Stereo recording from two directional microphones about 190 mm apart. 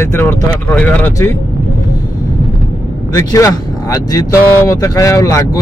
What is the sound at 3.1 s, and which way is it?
Speech, 15° left (ahead or behind).